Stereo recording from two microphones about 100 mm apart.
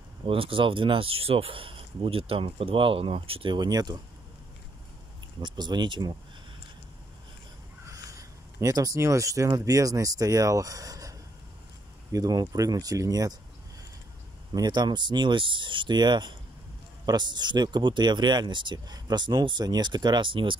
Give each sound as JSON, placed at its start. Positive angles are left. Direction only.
{"t": 0.2, "sound": "speech", "side_deg": -65}
{"t": 3.5, "sound": "speech", "side_deg": -45}
{"t": 5.4, "sound": "speech", "side_deg": -45}
{"t": 7.9, "sound": "speech", "side_deg": -35}
{"t": 14.5, "sound": "speech", "side_deg": -45}